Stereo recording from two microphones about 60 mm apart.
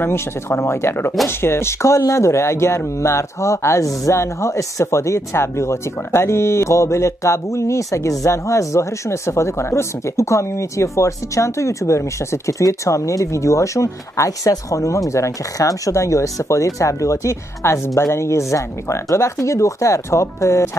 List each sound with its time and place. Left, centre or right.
0.0 s speech: left
15.0 s speech: left